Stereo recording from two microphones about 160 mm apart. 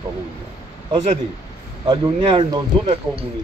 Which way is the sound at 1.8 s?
25° right (ahead or behind).